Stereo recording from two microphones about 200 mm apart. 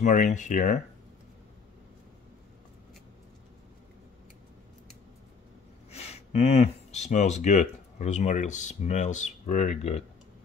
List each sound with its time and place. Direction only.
0.0 s speech: 40° left (ahead or behind)
5.9 s speech: 30° left (ahead or behind)